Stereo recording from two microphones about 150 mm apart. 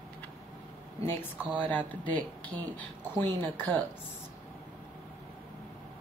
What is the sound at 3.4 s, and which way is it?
Speech, 15° left (ahead or behind).